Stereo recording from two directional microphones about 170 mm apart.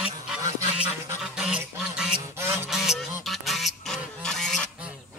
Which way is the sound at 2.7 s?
Centre (ahead or behind).